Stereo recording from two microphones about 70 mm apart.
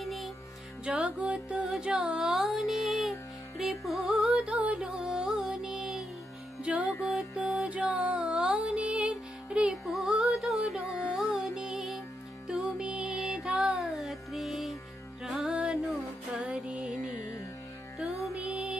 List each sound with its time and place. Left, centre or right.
0.0 s music: centre
0.8 s music: centre
6.6 s music: centre
6.9 s music: centre
7.8 s music: centre
9.7 s music: centre
18.4 s music: centre